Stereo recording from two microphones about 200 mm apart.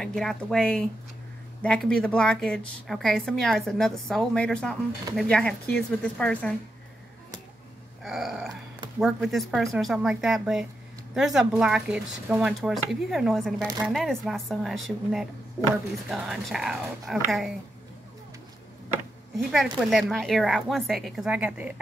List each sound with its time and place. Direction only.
0.0 s a woman's voice: centre (ahead or behind)
8.0 s a sound: centre (ahead or behind)
9.0 s a woman's voice: centre (ahead or behind)
19.3 s a woman's voice: centre (ahead or behind)